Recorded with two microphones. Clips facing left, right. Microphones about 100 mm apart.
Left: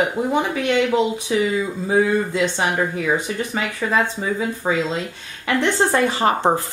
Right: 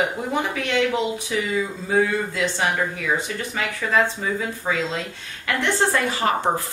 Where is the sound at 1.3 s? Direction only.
30° left (ahead or behind).